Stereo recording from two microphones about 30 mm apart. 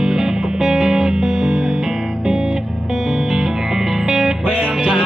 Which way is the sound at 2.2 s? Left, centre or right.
Centre.